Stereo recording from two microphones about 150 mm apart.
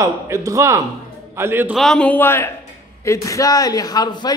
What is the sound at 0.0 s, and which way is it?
A man's voice, 20° right (ahead or behind).